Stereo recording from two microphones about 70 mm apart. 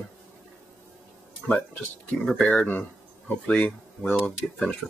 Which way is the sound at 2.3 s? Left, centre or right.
Centre.